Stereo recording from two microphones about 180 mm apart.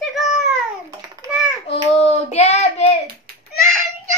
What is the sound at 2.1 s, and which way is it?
Child singing, 35° left (ahead or behind).